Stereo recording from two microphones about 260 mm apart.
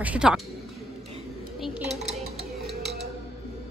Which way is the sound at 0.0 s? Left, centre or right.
Centre.